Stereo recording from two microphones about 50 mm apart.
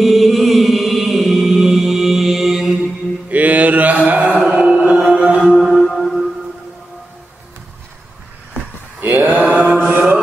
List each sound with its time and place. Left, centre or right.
0.0 s music: centre
3.3 s mantra: right
4.5 s music: right
5.4 s music: centre
9.0 s a sound: right
9.4 s mantra: right